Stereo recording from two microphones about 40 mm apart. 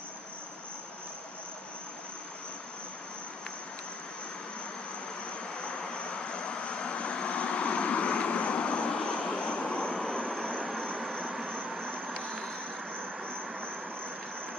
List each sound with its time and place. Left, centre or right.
5.7 s vehicle: left
10.0 s vehicle: centre
11.0 s vehicle: centre
12.4 s vehicle: centre